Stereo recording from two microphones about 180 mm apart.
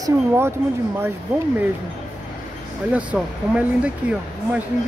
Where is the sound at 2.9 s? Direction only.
5° right (ahead or behind).